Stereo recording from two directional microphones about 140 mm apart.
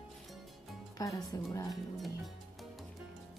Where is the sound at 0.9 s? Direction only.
25° left (ahead or behind).